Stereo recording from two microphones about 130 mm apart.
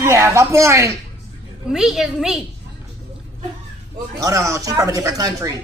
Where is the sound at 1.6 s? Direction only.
5° right (ahead or behind).